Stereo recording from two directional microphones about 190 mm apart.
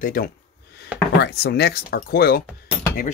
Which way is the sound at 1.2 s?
60° left (ahead or behind).